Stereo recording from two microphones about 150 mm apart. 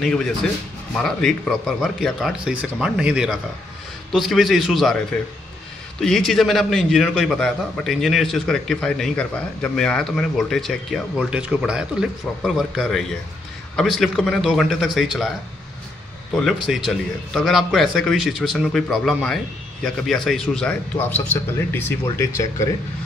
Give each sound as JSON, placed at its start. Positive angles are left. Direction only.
{"t": 0.0, "sound": "a man's voice", "side_deg": 5}
{"t": 5.9, "sound": "a man's voice", "side_deg": 0}
{"t": 16.3, "sound": "a man's voice", "side_deg": 0}
{"t": 21.2, "sound": "speech", "side_deg": 20}